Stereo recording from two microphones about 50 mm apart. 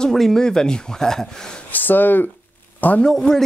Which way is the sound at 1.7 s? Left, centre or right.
Left.